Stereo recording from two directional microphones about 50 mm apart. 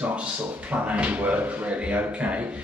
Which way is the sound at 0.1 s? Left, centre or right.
Right.